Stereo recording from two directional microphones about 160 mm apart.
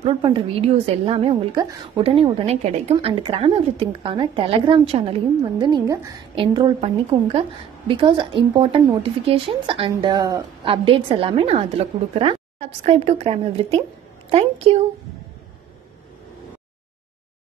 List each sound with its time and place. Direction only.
0.0 s a woman's voice: 35° right (ahead or behind)
2.0 s a woman's voice: 35° right (ahead or behind)